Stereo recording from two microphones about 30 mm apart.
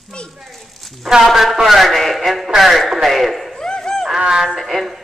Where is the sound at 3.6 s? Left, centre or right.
Left.